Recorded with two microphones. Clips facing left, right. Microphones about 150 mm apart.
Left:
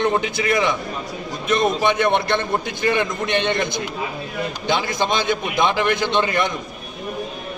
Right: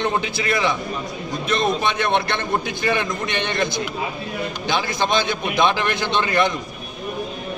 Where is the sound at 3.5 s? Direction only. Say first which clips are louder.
Even; 20° left (ahead or behind).